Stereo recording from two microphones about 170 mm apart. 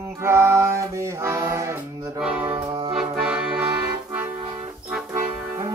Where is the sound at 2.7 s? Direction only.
30° right (ahead or behind).